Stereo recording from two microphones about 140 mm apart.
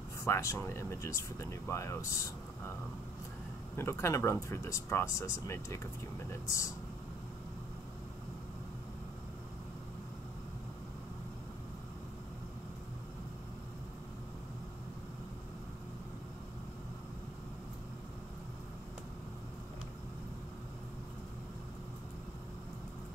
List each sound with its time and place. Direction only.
0.2 s speech: 20° left (ahead or behind)
3.7 s speech: 20° left (ahead or behind)